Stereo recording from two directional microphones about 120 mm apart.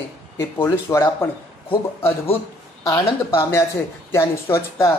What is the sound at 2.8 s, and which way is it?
Speech, 25° left (ahead or behind).